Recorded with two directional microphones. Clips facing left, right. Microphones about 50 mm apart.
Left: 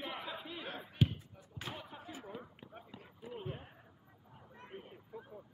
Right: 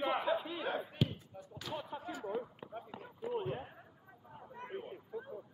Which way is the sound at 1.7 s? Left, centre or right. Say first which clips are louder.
Right 6 dB; centre.